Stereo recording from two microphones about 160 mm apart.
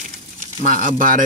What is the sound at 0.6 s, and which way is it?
Speech, 55° right (ahead or behind).